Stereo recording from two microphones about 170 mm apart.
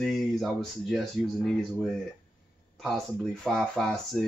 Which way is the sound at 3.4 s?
Centre (ahead or behind).